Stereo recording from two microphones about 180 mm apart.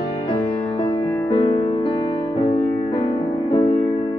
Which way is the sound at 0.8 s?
30° left (ahead or behind).